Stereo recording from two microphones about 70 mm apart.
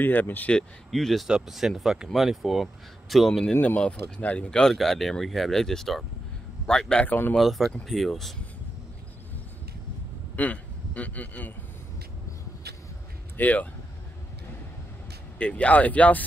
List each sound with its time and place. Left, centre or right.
0.0 s speech: left
0.5 s speech: centre
1.2 s speech: centre
3.6 s a man's voice: centre
7.1 s speech: left
7.3 s speech: centre
10.3 s a man's voice: left
13.4 s speech: left
15.3 s speech: centre